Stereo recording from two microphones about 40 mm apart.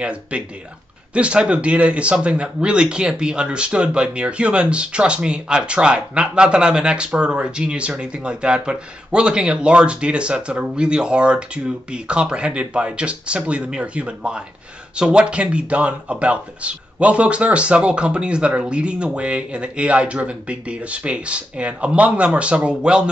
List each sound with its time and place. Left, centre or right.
0.0 s a man's voice: right